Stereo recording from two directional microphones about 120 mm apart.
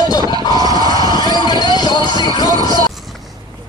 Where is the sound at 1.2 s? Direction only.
35° left (ahead or behind).